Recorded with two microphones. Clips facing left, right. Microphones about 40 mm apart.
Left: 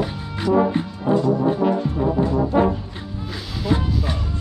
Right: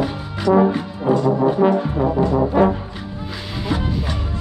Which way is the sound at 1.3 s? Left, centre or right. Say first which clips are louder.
Right 3 dB; right.